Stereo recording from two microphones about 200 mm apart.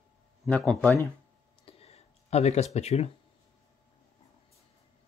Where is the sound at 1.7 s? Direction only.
30° left (ahead or behind).